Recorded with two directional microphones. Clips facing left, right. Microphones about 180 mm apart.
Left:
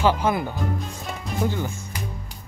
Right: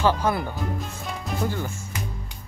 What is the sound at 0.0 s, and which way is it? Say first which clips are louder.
Speech: left 1 dB; 15° left (ahead or behind).